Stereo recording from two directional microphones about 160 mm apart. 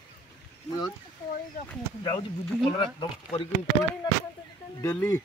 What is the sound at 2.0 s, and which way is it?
Speech, 30° left (ahead or behind).